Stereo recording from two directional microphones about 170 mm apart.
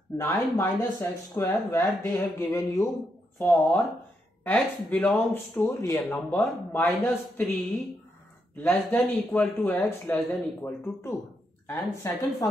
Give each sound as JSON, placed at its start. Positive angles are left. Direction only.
{"t": 0.2, "sound": "speech", "side_deg": 10}
{"t": 8.5, "sound": "speech", "side_deg": 10}